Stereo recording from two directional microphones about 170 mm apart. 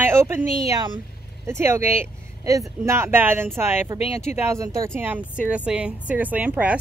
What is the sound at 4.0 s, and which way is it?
Speech, 40° left (ahead or behind).